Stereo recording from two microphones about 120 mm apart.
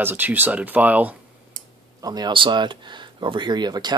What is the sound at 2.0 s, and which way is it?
Speech, 35° right (ahead or behind).